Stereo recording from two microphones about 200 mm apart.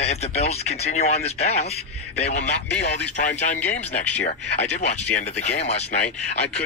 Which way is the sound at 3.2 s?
35° left (ahead or behind).